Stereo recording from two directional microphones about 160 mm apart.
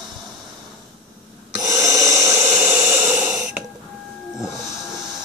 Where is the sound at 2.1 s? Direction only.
15° right (ahead or behind).